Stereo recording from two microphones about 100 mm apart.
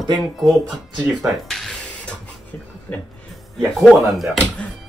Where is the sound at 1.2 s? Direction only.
Centre (ahead or behind).